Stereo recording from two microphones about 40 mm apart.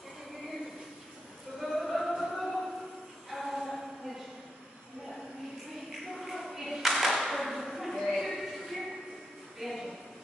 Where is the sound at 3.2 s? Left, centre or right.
Centre.